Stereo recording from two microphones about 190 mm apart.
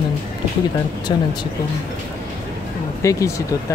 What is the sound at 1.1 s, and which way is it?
Speech, 25° left (ahead or behind).